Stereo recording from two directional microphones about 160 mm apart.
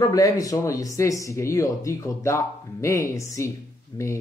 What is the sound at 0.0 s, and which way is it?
Speech, 20° left (ahead or behind).